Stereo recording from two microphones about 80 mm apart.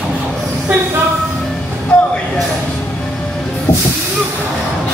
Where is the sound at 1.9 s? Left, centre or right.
Centre.